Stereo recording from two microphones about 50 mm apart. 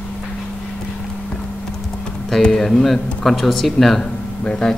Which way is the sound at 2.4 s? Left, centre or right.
Centre.